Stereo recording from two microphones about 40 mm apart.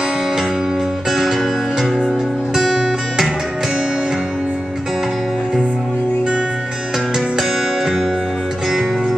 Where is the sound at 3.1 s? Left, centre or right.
Centre.